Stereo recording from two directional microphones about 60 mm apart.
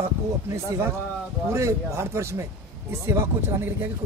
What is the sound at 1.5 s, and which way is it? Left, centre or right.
Speech, right.